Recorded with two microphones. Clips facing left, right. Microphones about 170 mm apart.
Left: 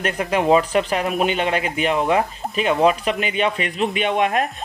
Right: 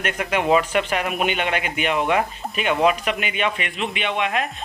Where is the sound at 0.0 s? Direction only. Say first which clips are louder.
Left 3 dB; 35° left (ahead or behind).